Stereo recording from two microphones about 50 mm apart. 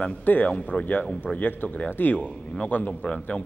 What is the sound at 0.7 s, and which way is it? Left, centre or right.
Speech, left.